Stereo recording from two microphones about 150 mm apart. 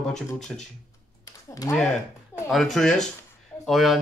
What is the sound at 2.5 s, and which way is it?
Speech, 5° left (ahead or behind).